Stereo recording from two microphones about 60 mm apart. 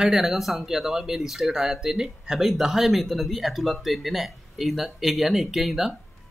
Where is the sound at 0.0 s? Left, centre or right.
Centre.